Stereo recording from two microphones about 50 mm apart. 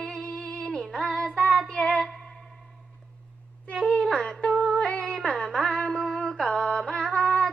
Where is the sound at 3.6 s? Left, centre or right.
Left.